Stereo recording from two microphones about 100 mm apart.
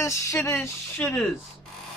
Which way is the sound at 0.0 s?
30° left (ahead or behind).